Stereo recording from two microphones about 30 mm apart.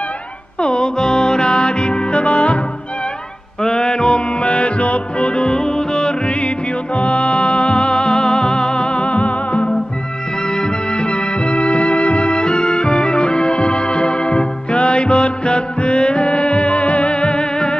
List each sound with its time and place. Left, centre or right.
0.6 s music: left
3.6 s music: left
5.3 s music: left
7.0 s music: left
10.4 s music: left